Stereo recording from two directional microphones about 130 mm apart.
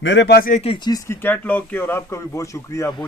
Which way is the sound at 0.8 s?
30° left (ahead or behind).